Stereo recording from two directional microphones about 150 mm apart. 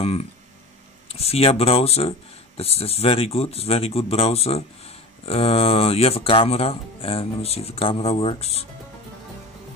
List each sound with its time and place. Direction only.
0.0 s speech: 40° left (ahead or behind)